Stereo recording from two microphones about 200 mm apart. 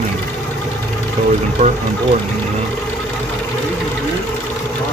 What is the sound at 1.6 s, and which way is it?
Speech, 35° right (ahead or behind).